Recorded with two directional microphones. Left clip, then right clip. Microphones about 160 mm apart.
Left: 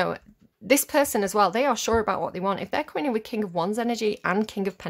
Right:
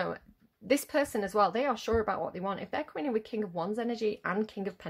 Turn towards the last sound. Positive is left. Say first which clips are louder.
# left 7 dB
turn(degrees=45)  # may be behind; listen again after turning